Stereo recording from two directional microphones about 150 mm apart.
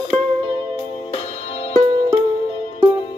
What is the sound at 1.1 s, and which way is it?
Music, 40° left (ahead or behind).